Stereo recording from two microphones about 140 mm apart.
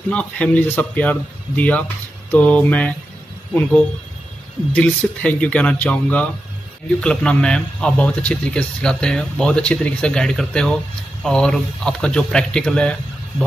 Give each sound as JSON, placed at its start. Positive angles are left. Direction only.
{"t": 0.1, "sound": "a man's voice", "side_deg": 10}
{"t": 4.7, "sound": "a man's voice", "side_deg": 10}